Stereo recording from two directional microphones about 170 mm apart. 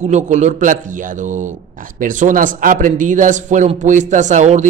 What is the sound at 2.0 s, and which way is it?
Speech, 50° right (ahead or behind).